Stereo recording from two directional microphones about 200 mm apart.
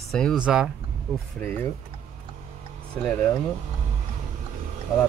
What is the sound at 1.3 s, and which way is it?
Speech, 10° left (ahead or behind).